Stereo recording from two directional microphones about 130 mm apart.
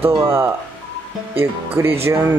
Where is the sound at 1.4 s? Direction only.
20° right (ahead or behind).